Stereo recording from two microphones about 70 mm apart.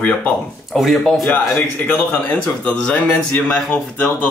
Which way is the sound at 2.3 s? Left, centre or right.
Centre.